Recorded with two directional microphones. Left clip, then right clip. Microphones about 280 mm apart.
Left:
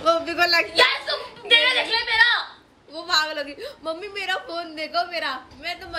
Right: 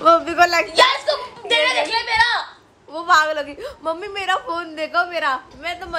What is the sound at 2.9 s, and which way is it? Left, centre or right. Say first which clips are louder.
A woman's voice: right 7 dB; centre.